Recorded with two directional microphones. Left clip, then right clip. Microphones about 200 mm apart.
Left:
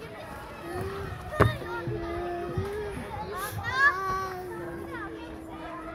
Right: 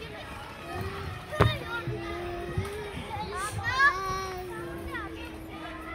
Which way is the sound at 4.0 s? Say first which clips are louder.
Left 2 dB; 45° left (ahead or behind).